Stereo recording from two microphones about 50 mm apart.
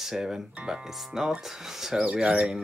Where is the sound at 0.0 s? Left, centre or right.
Centre.